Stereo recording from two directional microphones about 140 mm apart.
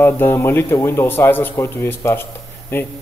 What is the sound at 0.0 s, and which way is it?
A man's voice, 15° left (ahead or behind).